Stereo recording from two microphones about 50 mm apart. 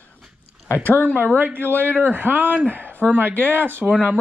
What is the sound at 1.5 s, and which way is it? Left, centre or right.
Speech, right.